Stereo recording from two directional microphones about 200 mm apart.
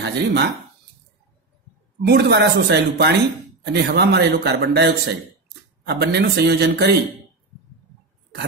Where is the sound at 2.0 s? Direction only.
55° right (ahead or behind).